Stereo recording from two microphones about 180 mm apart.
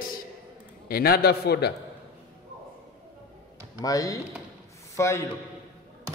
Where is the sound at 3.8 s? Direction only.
20° left (ahead or behind).